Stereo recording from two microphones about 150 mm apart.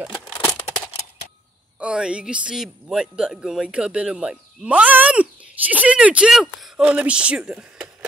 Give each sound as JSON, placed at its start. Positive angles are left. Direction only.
{"t": 0.1, "sound": "crumpling", "side_deg": 15}
{"t": 1.8, "sound": "speech", "side_deg": -5}